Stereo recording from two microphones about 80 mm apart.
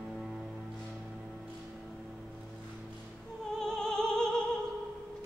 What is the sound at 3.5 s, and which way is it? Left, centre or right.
Music, centre.